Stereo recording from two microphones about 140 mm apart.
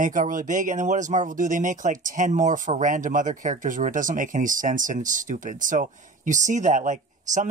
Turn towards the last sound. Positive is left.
turn(degrees=-65)  # may be behind; listen again after turning